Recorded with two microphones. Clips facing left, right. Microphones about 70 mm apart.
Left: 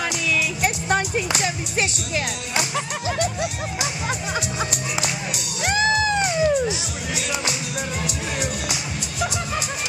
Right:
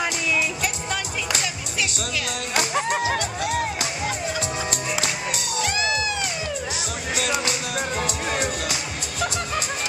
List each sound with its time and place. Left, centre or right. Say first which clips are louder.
0.6 s music: left 6 dB; left
1.4 s speech: left 4 dB; left
5.6 s music: left 5 dB; left